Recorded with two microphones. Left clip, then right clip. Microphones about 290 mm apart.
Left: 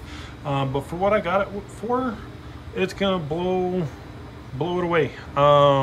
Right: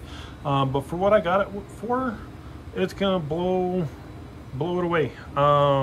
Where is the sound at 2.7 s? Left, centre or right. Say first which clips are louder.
Left 1 dB; centre.